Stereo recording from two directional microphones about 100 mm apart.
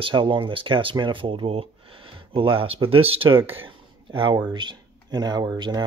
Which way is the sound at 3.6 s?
55° right (ahead or behind).